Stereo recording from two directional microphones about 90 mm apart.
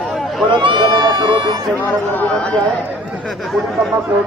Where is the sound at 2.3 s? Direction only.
15° left (ahead or behind).